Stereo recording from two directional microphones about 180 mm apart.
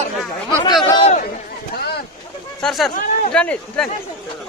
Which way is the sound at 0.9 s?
35° left (ahead or behind).